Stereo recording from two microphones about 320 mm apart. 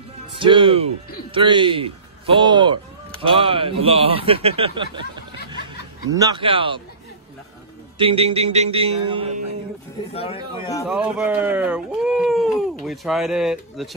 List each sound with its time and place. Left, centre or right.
0.4 s speech: centre
6.1 s speech: centre
8.0 s speech: centre
10.1 s speech: centre
10.9 s speech: centre